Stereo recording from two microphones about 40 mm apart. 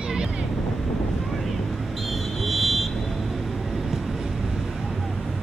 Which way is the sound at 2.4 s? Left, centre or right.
Centre.